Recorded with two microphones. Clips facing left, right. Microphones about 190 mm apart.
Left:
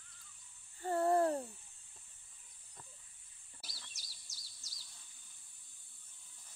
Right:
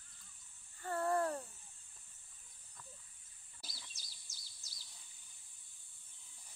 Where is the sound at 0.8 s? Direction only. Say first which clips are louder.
Left 5 dB; 25° left (ahead or behind).